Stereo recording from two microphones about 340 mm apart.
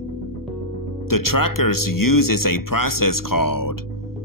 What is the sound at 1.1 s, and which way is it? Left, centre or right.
Speech, left.